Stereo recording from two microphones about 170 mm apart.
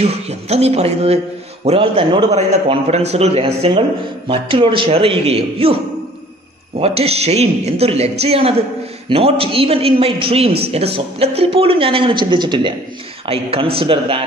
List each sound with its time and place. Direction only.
0.0 s a man's voice: 40° right (ahead or behind)
6.8 s a man's voice: 35° right (ahead or behind)